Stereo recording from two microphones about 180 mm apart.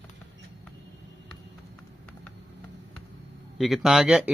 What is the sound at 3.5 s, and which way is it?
Speech, centre (ahead or behind).